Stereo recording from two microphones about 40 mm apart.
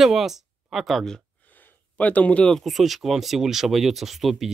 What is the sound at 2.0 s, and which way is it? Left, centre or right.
Speech, left.